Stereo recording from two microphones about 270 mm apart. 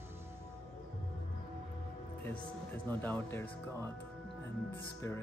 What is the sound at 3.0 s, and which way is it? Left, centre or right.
Speech, centre.